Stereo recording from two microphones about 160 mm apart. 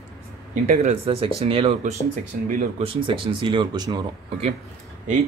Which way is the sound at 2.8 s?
30° right (ahead or behind).